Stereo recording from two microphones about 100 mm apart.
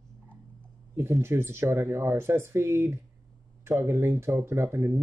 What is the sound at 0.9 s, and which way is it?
Speech, 25° right (ahead or behind).